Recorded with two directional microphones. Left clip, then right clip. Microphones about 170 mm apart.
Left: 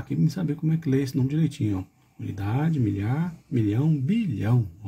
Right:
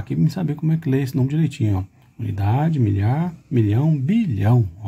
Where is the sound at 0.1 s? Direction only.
25° right (ahead or behind).